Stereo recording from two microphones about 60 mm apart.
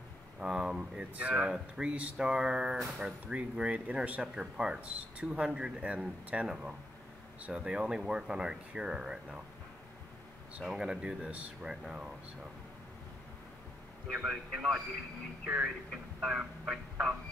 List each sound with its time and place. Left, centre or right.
0.4 s speech: centre
10.6 s speech: centre
11.6 s speech: centre
14.2 s speech: centre